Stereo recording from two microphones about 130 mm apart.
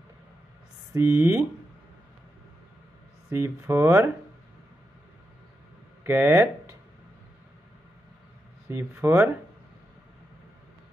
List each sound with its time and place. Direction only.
0.9 s speech: 20° right (ahead or behind)
3.3 s speech: 20° right (ahead or behind)
6.0 s speech: 15° right (ahead or behind)
8.6 s speech: 20° right (ahead or behind)